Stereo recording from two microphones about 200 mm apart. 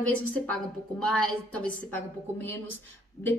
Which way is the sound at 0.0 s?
5° left (ahead or behind).